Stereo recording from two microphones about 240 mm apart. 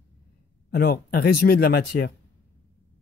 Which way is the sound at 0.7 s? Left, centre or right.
Left.